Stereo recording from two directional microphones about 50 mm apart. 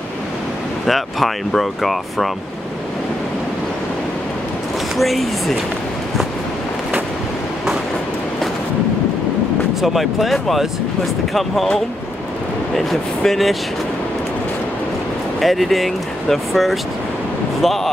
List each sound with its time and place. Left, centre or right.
0.8 s speech: centre
4.9 s speech: centre
9.8 s speech: centre
15.4 s speech: centre